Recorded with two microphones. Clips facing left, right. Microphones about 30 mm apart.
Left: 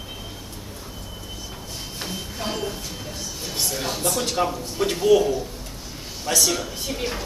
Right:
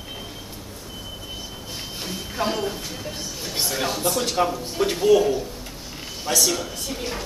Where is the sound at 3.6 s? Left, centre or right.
Centre.